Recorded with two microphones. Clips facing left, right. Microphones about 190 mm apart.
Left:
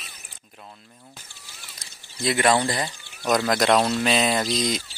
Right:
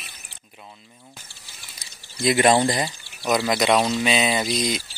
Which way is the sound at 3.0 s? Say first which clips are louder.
Left 1 dB; 5° right (ahead or behind).